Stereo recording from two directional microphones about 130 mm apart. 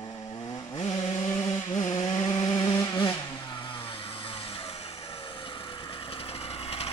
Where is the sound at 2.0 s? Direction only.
45° left (ahead or behind).